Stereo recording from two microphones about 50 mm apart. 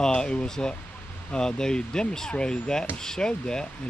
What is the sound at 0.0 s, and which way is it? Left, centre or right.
Speech, centre.